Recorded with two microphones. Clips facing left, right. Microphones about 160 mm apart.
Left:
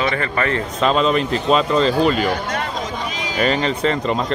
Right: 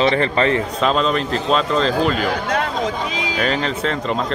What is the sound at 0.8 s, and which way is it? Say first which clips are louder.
Speech: left 5 dB; centre (ahead or behind).